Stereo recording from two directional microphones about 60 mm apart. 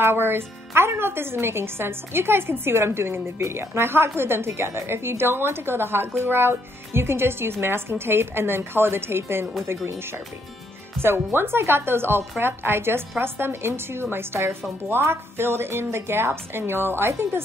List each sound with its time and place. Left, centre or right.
0.0 s a woman's voice: right